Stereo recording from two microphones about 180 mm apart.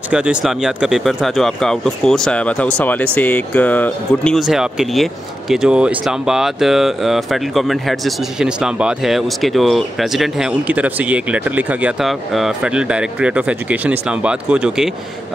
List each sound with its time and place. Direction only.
0.1 s speech: 5° right (ahead or behind)